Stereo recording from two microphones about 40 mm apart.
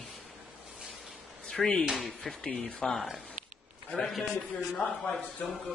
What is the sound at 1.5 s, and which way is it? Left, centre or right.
Speech, centre.